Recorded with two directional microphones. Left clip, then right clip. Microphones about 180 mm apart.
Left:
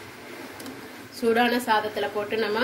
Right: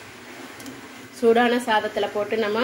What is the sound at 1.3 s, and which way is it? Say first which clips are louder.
Speech: right 2 dB; 20° right (ahead or behind).